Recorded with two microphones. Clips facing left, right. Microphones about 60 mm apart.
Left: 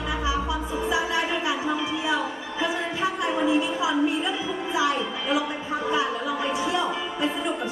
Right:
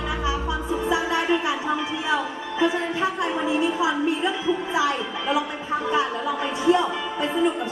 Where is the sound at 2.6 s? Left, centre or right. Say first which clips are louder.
Right 4 dB; right.